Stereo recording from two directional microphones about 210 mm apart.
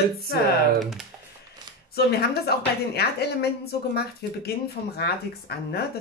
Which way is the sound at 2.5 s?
50° left (ahead or behind).